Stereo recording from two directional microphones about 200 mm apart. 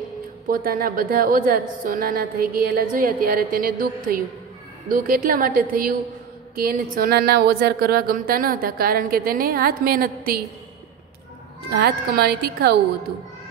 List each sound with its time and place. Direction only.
0.5 s speech: 45° right (ahead or behind)
11.7 s speech: 50° right (ahead or behind)